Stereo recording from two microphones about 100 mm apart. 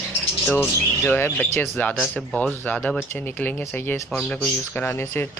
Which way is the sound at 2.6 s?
10° left (ahead or behind).